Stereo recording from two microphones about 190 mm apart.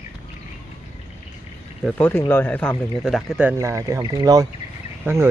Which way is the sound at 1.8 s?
5° left (ahead or behind).